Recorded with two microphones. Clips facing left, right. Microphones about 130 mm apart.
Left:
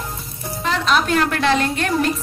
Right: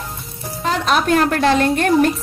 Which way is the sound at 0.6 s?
45° right (ahead or behind).